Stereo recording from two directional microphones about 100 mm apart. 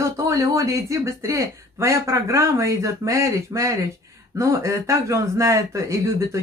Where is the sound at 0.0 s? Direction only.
30° right (ahead or behind).